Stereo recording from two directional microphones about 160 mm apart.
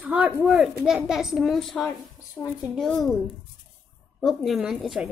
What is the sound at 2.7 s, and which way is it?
Speech, 5° left (ahead or behind).